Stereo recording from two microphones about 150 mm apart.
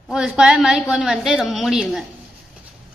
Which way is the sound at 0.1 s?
5° right (ahead or behind).